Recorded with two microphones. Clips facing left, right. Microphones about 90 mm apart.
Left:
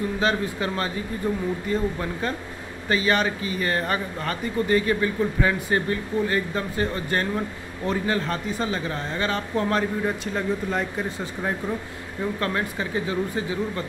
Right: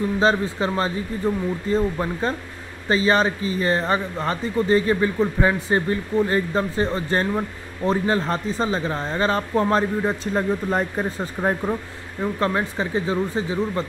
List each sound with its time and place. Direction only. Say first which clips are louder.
0.2 s speech: right 5 dB; 30° right (ahead or behind)
12.2 s speech: right 4 dB; 25° right (ahead or behind)